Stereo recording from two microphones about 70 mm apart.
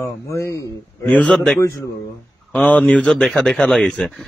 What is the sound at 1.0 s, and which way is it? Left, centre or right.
Speech, left.